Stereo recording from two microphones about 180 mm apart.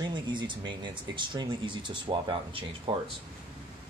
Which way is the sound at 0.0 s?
25° right (ahead or behind).